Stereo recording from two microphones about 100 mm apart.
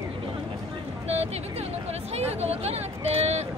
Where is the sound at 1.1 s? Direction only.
90° right.